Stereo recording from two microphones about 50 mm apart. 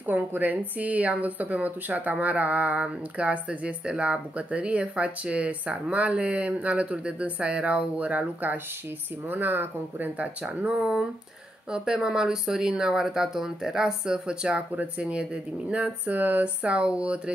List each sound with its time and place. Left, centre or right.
0.0 s a woman's voice: right
10.4 s a woman's voice: centre; by 16.4 s right
16.6 s a woman's voice: right